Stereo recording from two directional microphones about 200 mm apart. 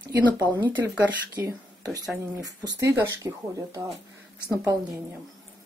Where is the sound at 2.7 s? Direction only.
15° right (ahead or behind).